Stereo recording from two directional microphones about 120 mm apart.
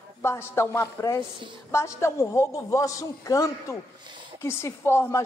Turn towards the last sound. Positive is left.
turn(degrees=20)  # may be behind; listen again after turning